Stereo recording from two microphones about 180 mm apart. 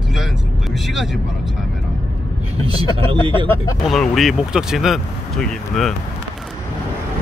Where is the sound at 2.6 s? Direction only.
30° right (ahead or behind).